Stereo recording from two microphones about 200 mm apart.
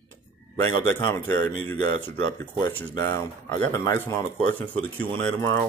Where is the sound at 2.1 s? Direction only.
10° left (ahead or behind).